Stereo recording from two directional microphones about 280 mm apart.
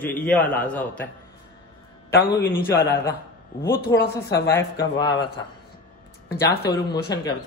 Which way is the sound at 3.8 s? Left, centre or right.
Centre.